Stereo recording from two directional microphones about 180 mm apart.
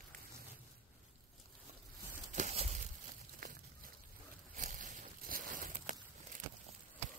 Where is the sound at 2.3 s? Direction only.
40° right (ahead or behind).